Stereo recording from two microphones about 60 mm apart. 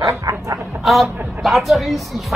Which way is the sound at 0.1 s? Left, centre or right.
Right.